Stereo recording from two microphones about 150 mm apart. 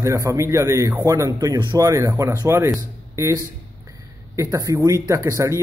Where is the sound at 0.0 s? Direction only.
20° right (ahead or behind).